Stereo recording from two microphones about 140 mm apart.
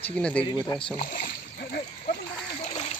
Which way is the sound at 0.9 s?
70° left (ahead or behind).